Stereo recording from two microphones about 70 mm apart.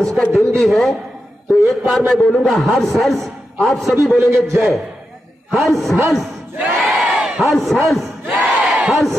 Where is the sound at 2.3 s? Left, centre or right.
Centre.